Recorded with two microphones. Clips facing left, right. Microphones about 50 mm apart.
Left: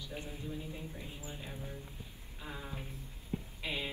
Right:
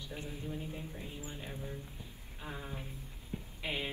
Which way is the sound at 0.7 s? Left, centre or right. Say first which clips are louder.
Right 1 dB; centre.